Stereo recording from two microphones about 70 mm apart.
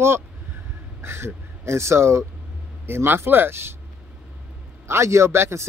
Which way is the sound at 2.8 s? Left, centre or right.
Right.